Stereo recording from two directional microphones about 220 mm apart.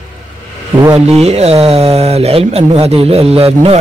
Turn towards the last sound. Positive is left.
turn(degrees=-25)  # may be behind; listen again after turning